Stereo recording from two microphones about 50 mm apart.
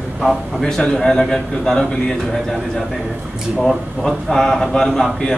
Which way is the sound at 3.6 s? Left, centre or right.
Centre.